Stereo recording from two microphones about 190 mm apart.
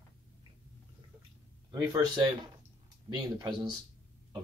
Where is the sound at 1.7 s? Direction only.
20° right (ahead or behind).